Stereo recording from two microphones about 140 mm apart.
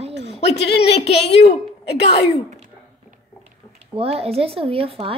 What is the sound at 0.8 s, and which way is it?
A woman's voice, 50° left (ahead or behind).